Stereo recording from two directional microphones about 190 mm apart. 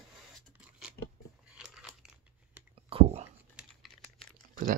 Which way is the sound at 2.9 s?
35° right (ahead or behind).